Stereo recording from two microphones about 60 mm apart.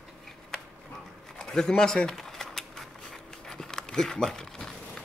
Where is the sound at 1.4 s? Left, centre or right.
Centre.